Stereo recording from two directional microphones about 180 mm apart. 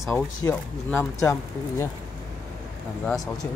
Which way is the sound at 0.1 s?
15° left (ahead or behind).